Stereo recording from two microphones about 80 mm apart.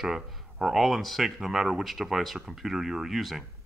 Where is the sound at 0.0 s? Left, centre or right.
Centre.